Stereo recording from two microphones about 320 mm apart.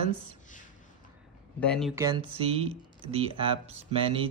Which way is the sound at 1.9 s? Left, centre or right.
Centre.